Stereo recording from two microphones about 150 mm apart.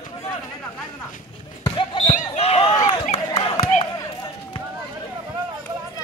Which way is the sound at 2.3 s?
40° left (ahead or behind).